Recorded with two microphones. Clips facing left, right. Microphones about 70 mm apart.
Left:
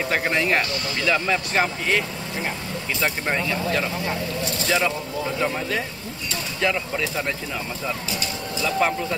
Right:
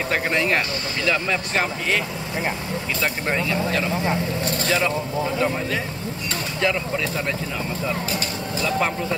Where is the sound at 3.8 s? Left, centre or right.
Right.